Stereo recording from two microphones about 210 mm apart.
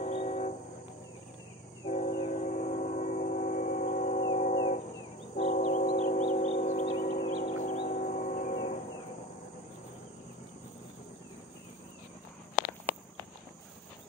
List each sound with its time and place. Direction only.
0.0 s train: 35° left (ahead or behind)
1.9 s train: 30° left (ahead or behind)